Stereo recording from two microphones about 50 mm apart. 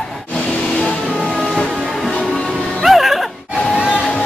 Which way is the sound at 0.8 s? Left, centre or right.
Left.